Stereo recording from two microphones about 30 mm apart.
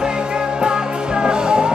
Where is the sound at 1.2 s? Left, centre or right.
Right.